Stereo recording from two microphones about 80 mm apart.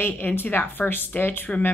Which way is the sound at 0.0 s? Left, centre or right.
Left.